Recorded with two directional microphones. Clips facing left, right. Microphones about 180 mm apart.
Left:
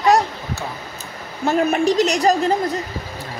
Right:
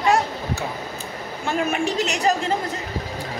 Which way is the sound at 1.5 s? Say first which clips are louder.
Left 6 dB; 40° left (ahead or behind).